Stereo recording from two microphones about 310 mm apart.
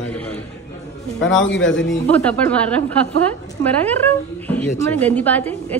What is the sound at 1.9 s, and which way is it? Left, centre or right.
A woman's voice, centre.